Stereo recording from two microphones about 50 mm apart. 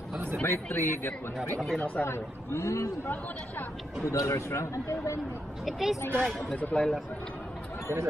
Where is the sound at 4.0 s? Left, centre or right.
Left.